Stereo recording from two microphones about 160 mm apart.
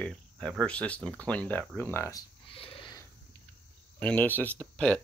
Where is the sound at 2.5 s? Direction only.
35° left (ahead or behind).